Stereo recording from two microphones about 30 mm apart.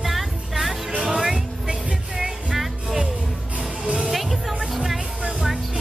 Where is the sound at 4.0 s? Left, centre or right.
Centre.